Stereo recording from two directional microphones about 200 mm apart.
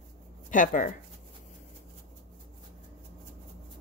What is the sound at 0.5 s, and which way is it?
Speech, 40° left (ahead or behind).